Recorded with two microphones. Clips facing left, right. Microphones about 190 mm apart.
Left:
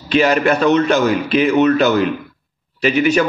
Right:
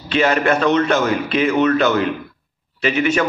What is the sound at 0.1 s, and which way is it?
A man's voice, 40° left (ahead or behind).